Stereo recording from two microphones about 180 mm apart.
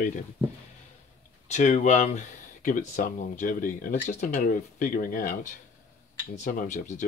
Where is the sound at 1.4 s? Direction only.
40° left (ahead or behind).